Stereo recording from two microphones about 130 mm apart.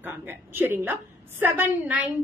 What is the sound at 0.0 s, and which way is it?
A woman's voice, 15° right (ahead or behind).